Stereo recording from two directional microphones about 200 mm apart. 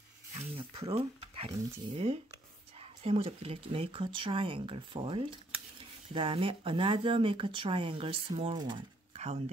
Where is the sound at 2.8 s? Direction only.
30° right (ahead or behind).